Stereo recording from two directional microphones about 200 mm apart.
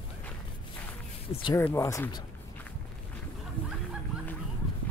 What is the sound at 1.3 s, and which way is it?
Speech, 25° left (ahead or behind).